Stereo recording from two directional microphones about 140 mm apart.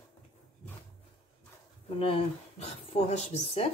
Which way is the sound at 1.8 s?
45° left (ahead or behind).